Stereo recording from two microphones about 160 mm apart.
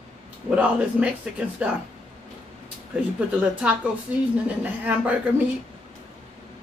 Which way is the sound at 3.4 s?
5° right (ahead or behind).